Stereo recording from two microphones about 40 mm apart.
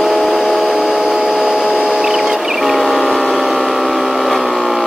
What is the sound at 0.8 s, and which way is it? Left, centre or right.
Vehicle, centre.